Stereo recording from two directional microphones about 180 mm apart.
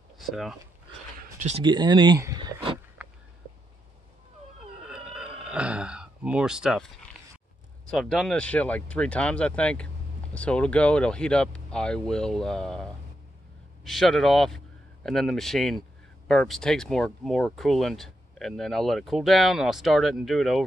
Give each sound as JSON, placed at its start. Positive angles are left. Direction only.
{"t": 0.2, "sound": "speech", "side_deg": 0}
{"t": 1.6, "sound": "speech", "side_deg": -25}
{"t": 4.8, "sound": "a sound", "side_deg": -5}
{"t": 7.8, "sound": "speech", "side_deg": 0}